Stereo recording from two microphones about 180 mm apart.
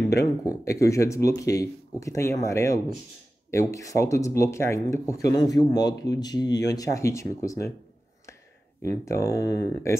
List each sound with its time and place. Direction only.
0.2 s speech: 20° left (ahead or behind)
8.8 s speech: 15° left (ahead or behind)